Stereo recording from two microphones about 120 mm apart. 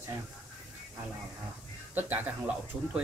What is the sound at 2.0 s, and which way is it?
Speech, 15° right (ahead or behind).